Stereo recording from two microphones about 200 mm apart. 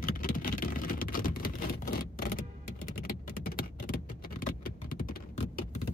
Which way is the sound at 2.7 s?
45° left (ahead or behind).